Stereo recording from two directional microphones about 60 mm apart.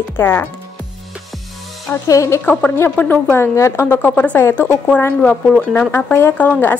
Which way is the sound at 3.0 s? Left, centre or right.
Left.